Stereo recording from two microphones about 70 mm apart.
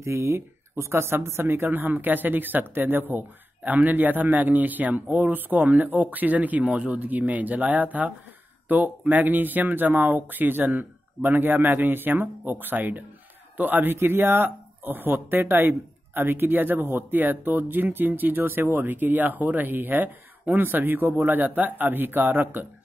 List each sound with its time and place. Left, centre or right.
0.0 s speech: right
13.9 s speech: right